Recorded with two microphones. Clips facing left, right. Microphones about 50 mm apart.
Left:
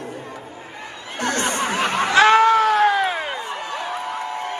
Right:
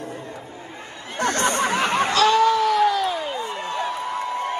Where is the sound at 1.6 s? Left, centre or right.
Left.